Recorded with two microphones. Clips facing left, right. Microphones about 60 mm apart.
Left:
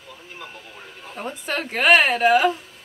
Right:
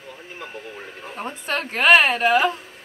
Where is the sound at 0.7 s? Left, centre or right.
Right.